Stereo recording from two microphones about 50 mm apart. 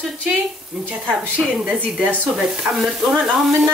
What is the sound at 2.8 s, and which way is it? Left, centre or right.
Stir, centre.